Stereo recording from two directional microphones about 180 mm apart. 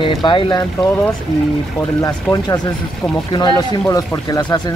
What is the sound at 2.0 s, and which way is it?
Speech, 20° left (ahead or behind).